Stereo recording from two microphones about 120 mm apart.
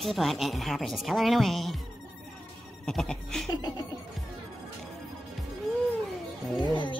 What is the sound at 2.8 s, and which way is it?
Speech, 5° left (ahead or behind).